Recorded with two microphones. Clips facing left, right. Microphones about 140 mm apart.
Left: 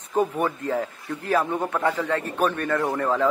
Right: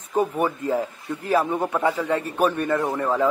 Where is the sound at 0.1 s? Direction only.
10° right (ahead or behind).